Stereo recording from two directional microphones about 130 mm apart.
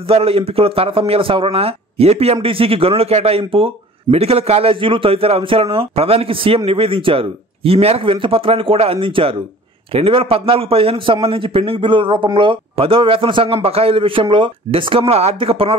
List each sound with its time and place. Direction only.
0.1 s a man's voice: 50° right (ahead or behind)